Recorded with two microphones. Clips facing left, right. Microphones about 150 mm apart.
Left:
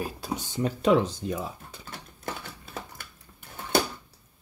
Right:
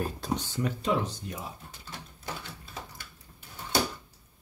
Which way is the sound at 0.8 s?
90° left.